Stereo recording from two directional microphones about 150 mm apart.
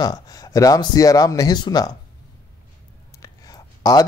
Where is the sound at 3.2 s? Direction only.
25° left (ahead or behind).